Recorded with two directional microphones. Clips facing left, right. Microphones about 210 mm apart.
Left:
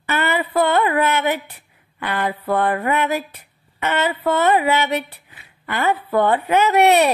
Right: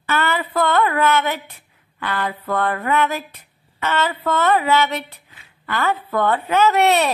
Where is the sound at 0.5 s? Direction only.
15° left (ahead or behind).